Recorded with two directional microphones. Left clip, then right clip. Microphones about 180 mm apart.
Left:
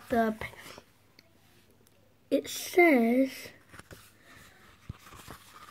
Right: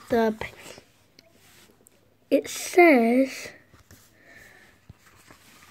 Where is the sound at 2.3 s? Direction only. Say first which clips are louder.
Right 6 dB; 20° right (ahead or behind).